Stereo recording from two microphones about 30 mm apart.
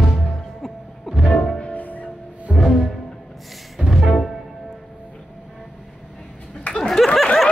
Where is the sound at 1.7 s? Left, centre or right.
Left.